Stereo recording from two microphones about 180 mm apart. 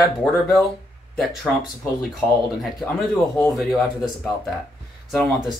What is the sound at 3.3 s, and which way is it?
Speech, centre (ahead or behind).